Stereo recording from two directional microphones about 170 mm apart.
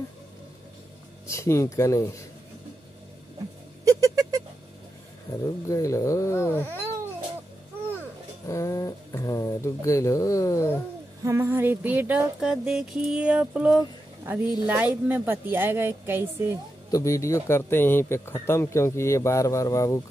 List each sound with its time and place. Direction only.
1.2 s speech: 15° left (ahead or behind)
3.8 s a sound: 20° right (ahead or behind)
5.3 s speech: 20° left (ahead or behind)
8.5 s speech: 20° left (ahead or behind)
11.2 s music: 15° right (ahead or behind)
14.2 s a woman's voice: 10° right (ahead or behind)
14.7 s music: 10° right (ahead or behind)
16.9 s speech: 15° left (ahead or behind)